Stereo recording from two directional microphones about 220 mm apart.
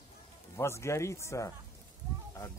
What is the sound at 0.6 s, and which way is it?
Speech, 10° left (ahead or behind).